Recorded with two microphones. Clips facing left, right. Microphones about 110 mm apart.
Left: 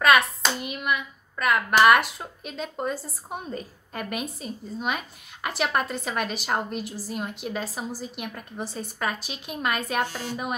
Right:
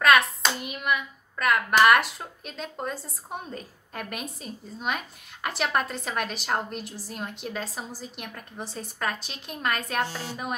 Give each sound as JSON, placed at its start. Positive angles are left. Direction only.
{"t": 0.0, "sound": "speech", "side_deg": 0}